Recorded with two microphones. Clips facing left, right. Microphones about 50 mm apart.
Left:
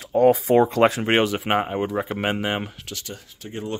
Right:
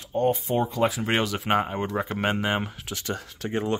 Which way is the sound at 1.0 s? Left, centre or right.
Left.